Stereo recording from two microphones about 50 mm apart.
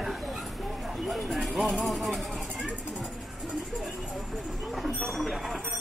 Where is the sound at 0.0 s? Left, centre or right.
Centre.